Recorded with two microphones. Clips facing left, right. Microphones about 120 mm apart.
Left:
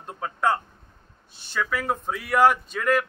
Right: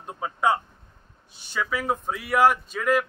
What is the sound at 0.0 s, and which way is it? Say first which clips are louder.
A man's voice: right 1 dB; 10° right (ahead or behind).